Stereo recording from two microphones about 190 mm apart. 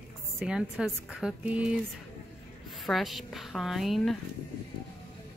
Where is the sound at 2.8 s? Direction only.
Centre (ahead or behind).